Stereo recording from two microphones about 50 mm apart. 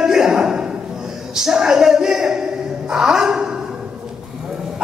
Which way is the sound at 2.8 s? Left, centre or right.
Centre.